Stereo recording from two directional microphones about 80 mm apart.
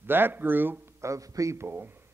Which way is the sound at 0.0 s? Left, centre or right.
Right.